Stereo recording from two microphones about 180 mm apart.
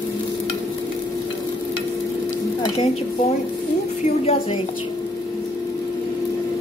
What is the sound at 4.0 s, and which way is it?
Speech, 35° left (ahead or behind).